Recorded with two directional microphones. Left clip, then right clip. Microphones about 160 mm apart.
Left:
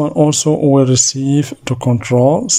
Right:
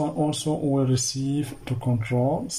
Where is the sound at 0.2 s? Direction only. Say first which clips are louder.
Left 13 dB; 55° left (ahead or behind).